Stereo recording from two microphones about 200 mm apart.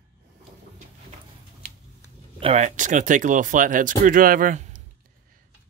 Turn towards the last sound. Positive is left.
turn(degrees=-40)  # may be behind; listen again after turning